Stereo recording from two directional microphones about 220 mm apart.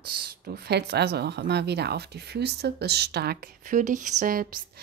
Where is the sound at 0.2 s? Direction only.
45° right (ahead or behind).